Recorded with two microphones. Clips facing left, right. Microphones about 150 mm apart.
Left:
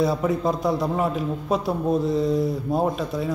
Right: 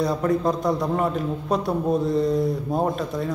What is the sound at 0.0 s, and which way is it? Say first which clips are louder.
Speech: even; centre (ahead or behind).